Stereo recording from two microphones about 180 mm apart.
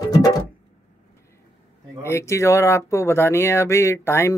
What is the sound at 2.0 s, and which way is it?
Speech, 15° left (ahead or behind).